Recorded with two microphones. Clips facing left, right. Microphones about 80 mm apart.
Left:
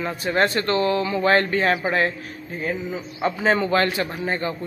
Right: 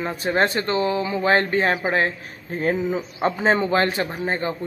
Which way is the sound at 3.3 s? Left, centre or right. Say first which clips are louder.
Even; right.